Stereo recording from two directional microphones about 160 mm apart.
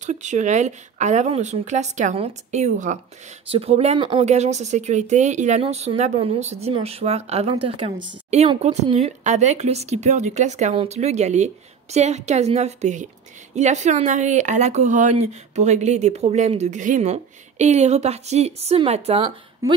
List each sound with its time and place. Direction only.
0.0 s a woman's voice: 50° right (ahead or behind)